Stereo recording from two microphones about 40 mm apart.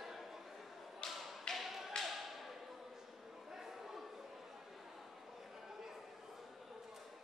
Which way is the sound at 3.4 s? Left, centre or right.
Centre.